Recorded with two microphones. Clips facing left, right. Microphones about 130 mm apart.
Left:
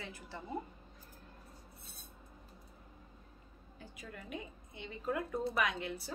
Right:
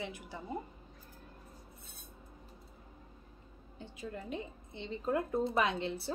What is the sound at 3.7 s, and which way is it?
Speech, 30° right (ahead or behind).